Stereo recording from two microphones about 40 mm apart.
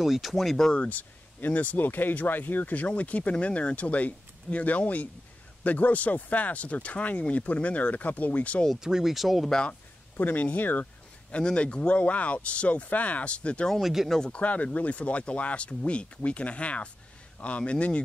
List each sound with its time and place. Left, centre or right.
0.0 s speech: centre
0.7 s speech: left
8.8 s speech: centre
9.1 s speech: centre
10.1 s speech: left
11.4 s speech: left
13.7 s speech: centre
14.4 s speech: left